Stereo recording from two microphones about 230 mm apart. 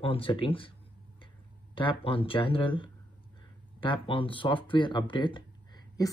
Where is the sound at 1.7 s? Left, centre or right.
Left.